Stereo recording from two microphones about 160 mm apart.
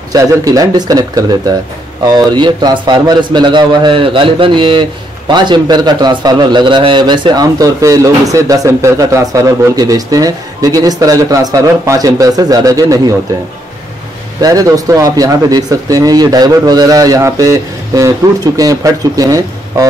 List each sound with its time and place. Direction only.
0.1 s a man's voice: 20° right (ahead or behind)
14.4 s a man's voice: 20° right (ahead or behind)